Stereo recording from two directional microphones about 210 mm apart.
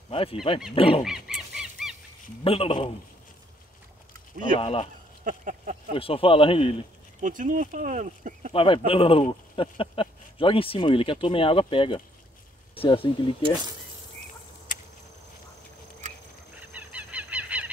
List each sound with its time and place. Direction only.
0.1 s speech: 25° left (ahead or behind)
1.0 s goose: centre (ahead or behind)
2.4 s speech: 25° left (ahead or behind)
4.6 s speech: 25° left (ahead or behind)
5.2 s a sound: 35° right (ahead or behind)
5.9 s speech: 25° left (ahead or behind)
7.2 s speech: 40° right (ahead or behind)
8.5 s speech: 25° left (ahead or behind)
16.5 s goose: 5° right (ahead or behind)